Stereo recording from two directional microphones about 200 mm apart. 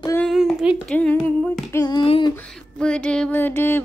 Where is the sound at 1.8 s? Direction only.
20° left (ahead or behind).